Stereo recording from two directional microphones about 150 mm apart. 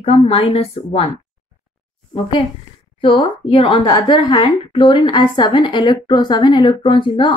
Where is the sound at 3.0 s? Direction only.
35° left (ahead or behind).